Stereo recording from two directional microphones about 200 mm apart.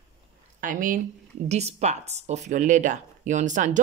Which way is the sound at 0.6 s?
40° right (ahead or behind).